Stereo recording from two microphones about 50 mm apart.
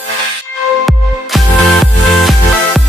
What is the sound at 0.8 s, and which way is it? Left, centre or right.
Music, centre.